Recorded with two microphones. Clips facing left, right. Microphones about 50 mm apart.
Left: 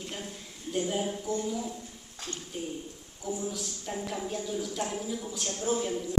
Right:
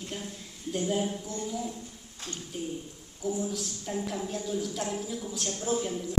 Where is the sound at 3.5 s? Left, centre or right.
Centre.